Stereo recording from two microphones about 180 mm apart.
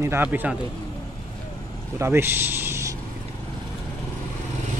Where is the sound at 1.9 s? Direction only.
15° right (ahead or behind).